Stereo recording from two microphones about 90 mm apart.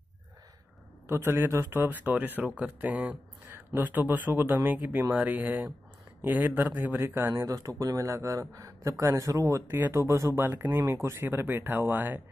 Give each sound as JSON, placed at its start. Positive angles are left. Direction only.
{"t": 1.0, "sound": "speech", "side_deg": -30}